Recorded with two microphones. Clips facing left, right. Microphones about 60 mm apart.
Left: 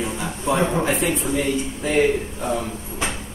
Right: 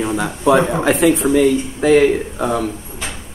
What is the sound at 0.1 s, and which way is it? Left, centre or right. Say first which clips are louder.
Speech: right 9 dB; right.